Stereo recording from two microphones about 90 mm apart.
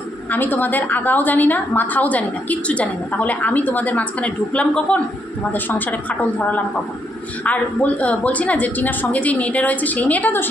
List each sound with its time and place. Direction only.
0.3 s a woman's voice: 20° left (ahead or behind)